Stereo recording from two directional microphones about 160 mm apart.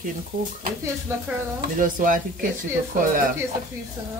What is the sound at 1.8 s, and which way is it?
Speech, 55° right (ahead or behind).